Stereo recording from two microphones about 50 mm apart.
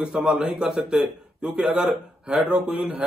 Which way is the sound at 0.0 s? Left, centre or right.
Centre.